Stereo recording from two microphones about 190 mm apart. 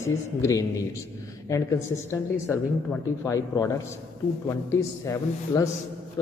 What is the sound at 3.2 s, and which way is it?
A man's voice, 15° left (ahead or behind).